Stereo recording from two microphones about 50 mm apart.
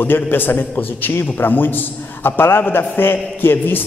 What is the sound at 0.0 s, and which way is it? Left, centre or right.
A man's voice, left.